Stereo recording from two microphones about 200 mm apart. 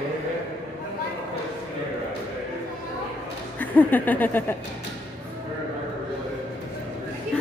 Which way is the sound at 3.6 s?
10° left (ahead or behind).